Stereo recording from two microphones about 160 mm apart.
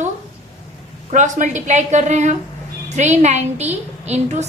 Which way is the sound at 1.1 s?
50° right (ahead or behind).